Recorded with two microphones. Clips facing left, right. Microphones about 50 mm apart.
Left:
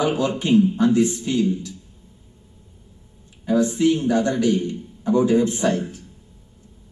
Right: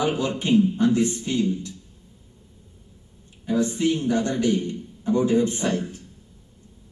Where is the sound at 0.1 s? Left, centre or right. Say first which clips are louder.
Left 3 dB; left.